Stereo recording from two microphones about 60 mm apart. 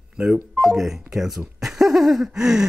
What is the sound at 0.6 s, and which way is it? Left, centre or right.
Speech, centre.